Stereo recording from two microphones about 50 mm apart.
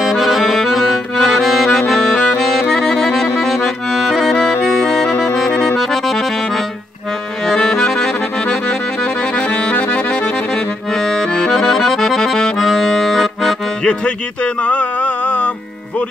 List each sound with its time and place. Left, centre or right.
0.0 s accordion: centre
1.2 s music: centre
5.8 s accordion: centre
7.4 s accordion: centre
9.5 s accordion: left
10.5 s accordion: centre
13.8 s music: left